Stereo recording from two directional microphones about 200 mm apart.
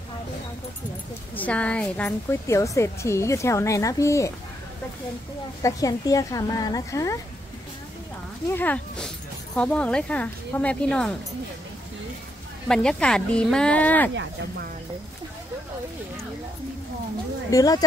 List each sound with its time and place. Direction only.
1.3 s a woman's voice: 5° left (ahead or behind)
5.6 s a woman's voice: 15° left (ahead or behind)
8.5 s a woman's voice: 10° left (ahead or behind)
12.6 s speech: 5° left (ahead or behind)
14.1 s speech: 60° right (ahead or behind)
17.5 s a woman's voice: 15° left (ahead or behind)